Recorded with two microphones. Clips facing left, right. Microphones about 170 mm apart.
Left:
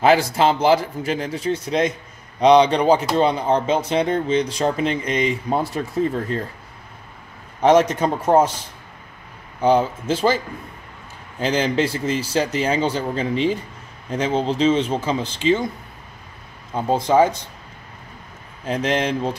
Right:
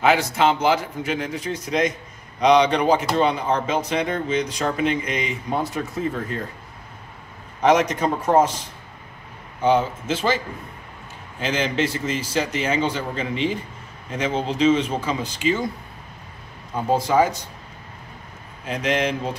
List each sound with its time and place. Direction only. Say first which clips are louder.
0.0 s speech: left 3 dB; 35° left (ahead or behind)
7.6 s speech: left 3 dB; 30° left (ahead or behind)
9.6 s speech: left 2 dB; 35° left (ahead or behind)
16.7 s speech: left 2 dB; 25° left (ahead or behind)
18.7 s speech: left 2 dB; 35° left (ahead or behind)